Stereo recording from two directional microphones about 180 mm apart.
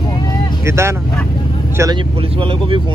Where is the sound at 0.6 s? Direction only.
15° right (ahead or behind).